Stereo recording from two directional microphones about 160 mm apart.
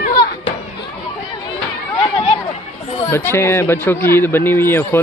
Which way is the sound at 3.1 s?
15° left (ahead or behind).